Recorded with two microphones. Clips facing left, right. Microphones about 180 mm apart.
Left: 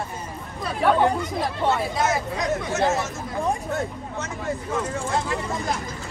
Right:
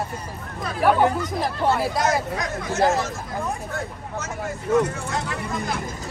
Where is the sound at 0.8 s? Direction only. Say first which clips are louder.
Right 1 dB; 5° right (ahead or behind).